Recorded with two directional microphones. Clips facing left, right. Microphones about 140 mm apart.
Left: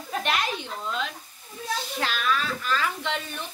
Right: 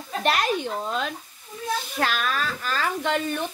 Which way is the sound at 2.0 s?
50° right (ahead or behind).